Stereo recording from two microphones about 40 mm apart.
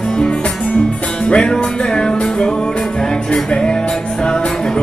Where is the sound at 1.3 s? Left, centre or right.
Centre.